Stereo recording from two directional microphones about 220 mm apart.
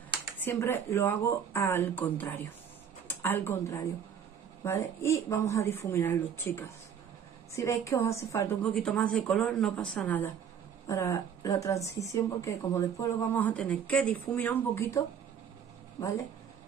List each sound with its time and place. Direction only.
0.4 s a woman's voice: 10° left (ahead or behind)